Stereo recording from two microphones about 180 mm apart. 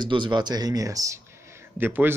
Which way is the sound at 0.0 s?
25° right (ahead or behind).